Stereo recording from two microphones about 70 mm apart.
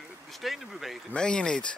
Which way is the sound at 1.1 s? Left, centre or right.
Centre.